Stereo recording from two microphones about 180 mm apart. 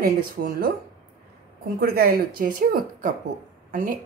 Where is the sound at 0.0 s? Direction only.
55° right (ahead or behind).